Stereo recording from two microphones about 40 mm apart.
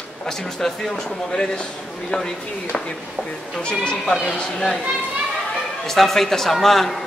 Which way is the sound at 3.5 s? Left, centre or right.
Left.